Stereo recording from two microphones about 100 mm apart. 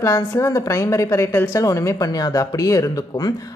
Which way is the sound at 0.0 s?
30° left (ahead or behind).